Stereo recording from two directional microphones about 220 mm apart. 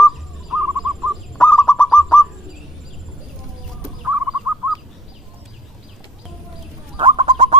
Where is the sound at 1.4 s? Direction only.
5° left (ahead or behind).